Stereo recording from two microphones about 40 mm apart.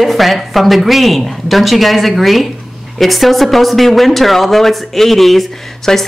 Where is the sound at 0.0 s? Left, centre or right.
Centre.